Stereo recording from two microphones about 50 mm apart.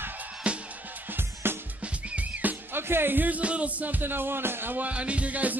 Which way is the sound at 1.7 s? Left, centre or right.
Right.